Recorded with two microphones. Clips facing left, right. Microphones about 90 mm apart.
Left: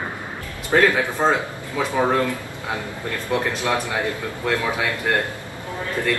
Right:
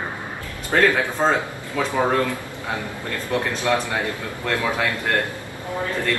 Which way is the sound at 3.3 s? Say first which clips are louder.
Right 1 dB; 15° left (ahead or behind).